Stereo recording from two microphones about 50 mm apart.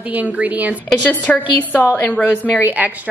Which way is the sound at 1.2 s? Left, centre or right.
Left.